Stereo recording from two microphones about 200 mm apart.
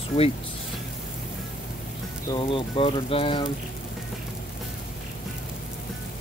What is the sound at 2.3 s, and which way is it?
Speech, 25° left (ahead or behind).